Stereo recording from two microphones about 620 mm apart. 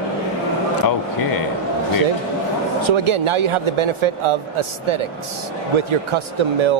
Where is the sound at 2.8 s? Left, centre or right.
Right.